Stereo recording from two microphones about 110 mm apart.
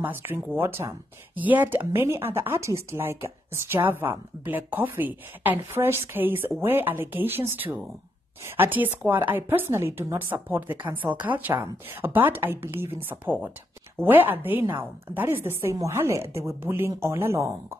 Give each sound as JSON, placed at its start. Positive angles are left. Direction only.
{"t": 0.0, "sound": "a woman's voice", "side_deg": -20}